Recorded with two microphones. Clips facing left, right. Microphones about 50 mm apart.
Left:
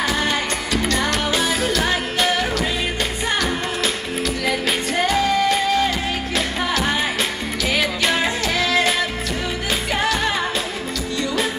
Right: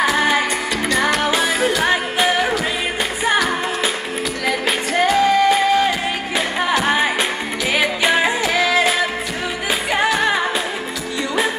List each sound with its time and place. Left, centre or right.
0.0 s music: centre